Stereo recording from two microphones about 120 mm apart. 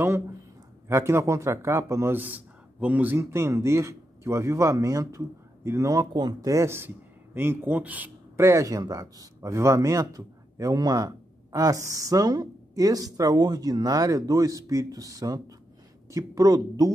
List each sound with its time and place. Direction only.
0.8 s speech: 25° right (ahead or behind)